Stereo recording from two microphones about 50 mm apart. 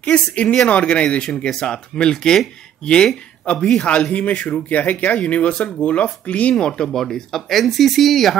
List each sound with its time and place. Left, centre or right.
0.0 s speech: left
6.6 s speech: centre